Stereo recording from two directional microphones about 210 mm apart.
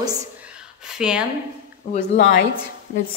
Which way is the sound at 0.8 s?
5° right (ahead or behind).